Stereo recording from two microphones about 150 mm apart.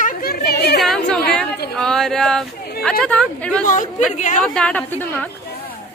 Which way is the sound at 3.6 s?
60° left (ahead or behind).